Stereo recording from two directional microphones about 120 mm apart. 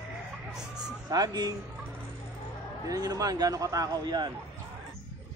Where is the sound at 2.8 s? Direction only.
30° right (ahead or behind).